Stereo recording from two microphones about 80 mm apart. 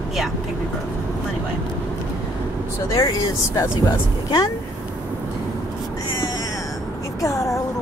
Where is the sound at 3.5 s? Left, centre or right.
Left.